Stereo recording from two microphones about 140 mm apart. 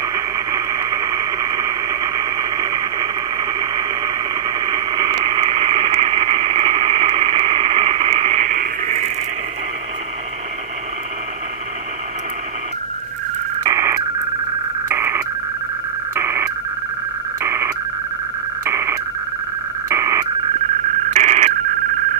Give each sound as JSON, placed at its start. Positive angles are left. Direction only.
{"t": 0.0, "sound": "radio", "side_deg": -25}
{"t": 8.5, "sound": "radio", "side_deg": -65}
{"t": 13.7, "sound": "radio", "side_deg": -20}
{"t": 14.9, "sound": "a sound", "side_deg": -15}
{"t": 16.2, "sound": "synthesizer", "side_deg": -15}
{"t": 17.4, "sound": "radio", "side_deg": -20}
{"t": 21.1, "sound": "telephone", "side_deg": -55}